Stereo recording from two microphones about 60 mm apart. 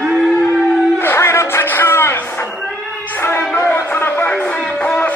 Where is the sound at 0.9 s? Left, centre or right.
Left.